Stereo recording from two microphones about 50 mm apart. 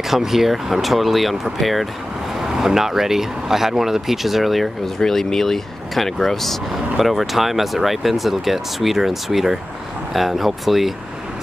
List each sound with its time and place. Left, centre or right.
0.1 s speech: centre